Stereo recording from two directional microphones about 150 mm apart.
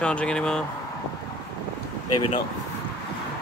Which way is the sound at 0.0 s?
5° left (ahead or behind).